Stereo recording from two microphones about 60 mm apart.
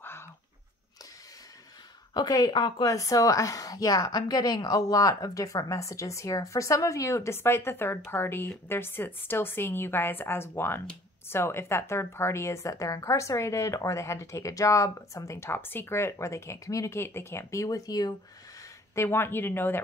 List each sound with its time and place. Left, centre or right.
2.2 s speech: left
2.9 s a woman's voice: left
7.3 s a woman's voice: left
15.5 s speech: left
17.0 s a woman's voice: left
18.9 s a woman's voice: left